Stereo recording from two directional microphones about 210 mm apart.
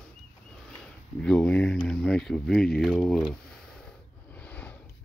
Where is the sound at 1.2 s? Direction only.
5° left (ahead or behind).